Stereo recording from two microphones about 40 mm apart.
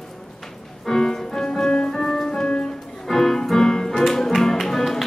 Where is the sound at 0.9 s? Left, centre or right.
Centre.